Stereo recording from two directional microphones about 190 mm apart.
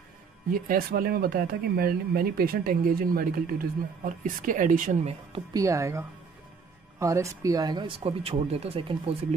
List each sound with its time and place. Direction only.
0.5 s speech: 50° right (ahead or behind)
5.3 s a woman's voice: 20° right (ahead or behind)